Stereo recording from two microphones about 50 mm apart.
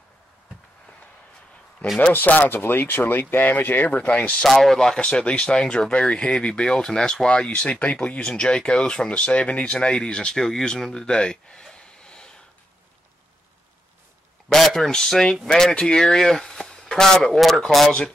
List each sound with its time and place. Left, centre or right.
2.1 s speech: left
2.5 s speech: left
4.4 s speech: centre
5.0 s speech: left
14.5 s speech: centre